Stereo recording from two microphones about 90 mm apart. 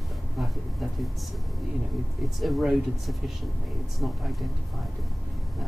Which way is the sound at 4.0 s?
Centre (ahead or behind).